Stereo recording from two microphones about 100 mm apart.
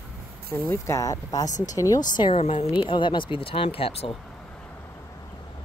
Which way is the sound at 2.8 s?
55° left (ahead or behind).